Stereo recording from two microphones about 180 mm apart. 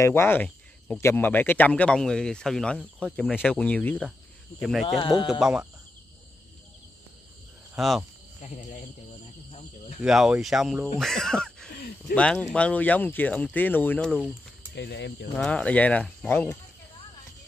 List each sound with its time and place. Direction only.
0.0 s speech: 10° left (ahead or behind)
4.8 s speech: 25° left (ahead or behind)
5.4 s speech: 5° right (ahead or behind)
7.7 s speech: centre (ahead or behind)
10.0 s speech: centre (ahead or behind)
14.8 s speech: 70° left (ahead or behind)
15.3 s speech: 5° left (ahead or behind)